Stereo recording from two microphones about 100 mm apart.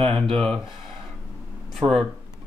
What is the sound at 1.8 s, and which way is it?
Speech, 5° left (ahead or behind).